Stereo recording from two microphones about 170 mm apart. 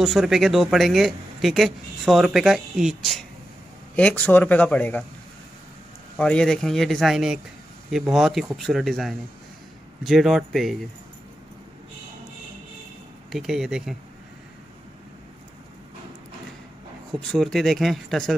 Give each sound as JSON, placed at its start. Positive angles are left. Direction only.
{"t": 0.0, "sound": "speech", "side_deg": 0}
{"t": 6.1, "sound": "speech", "side_deg": 5}
{"t": 13.3, "sound": "speech", "side_deg": 0}
{"t": 17.2, "sound": "speech", "side_deg": 0}